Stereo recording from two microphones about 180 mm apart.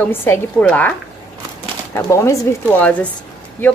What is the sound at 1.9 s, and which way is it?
Speech, 15° left (ahead or behind).